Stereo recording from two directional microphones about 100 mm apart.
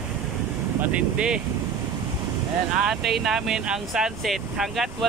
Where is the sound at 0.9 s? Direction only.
10° right (ahead or behind).